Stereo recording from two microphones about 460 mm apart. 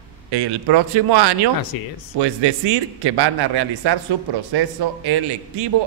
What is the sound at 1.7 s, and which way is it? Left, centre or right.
Speech, left.